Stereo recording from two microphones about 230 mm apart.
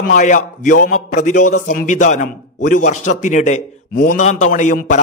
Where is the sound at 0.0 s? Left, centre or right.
Left.